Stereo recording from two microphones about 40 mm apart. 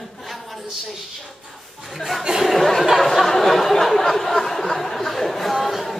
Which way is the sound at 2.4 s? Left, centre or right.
Centre.